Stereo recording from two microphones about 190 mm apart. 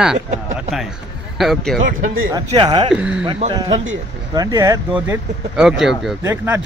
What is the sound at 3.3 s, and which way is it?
Speech, 25° right (ahead or behind).